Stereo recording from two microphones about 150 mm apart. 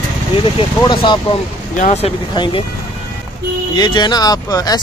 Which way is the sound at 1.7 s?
50° left (ahead or behind).